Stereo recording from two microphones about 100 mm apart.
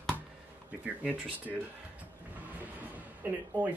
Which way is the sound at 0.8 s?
15° right (ahead or behind).